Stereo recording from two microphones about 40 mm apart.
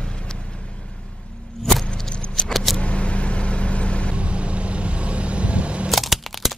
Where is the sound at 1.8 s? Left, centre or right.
Centre.